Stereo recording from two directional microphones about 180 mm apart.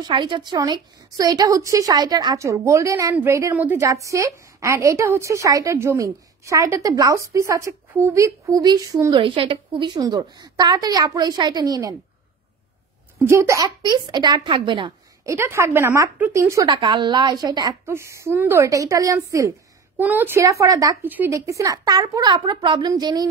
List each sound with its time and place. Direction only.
0.0 s a woman's voice: 25° right (ahead or behind)
13.2 s a woman's voice: 15° right (ahead or behind)
15.3 s a woman's voice: 15° right (ahead or behind)